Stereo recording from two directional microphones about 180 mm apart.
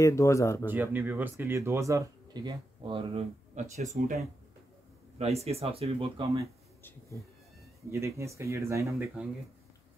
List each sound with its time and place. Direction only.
0.0 s speech: 15° left (ahead or behind)
0.7 s speech: 10° right (ahead or behind); by 6.4 s 30° right (ahead or behind)
6.8 s cat: 15° left (ahead or behind)
8.2 s speech: 15° right (ahead or behind)